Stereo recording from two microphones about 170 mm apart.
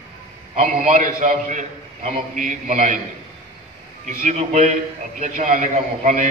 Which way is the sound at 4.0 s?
50° right (ahead or behind).